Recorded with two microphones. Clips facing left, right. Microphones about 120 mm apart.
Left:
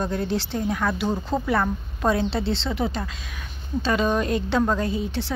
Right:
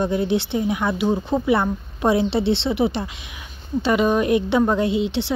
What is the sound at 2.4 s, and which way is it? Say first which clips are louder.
Speech: right 6 dB; 70° right (ahead or behind).